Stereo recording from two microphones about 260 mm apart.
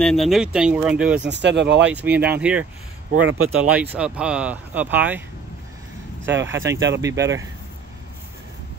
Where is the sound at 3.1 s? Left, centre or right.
Right.